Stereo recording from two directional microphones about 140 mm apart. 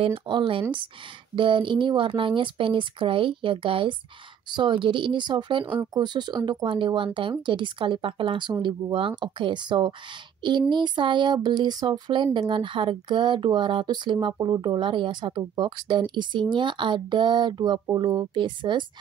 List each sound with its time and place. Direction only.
0.0 s speech: 35° right (ahead or behind)